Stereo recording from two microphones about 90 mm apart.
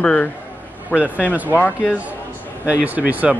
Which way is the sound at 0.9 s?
15° right (ahead or behind).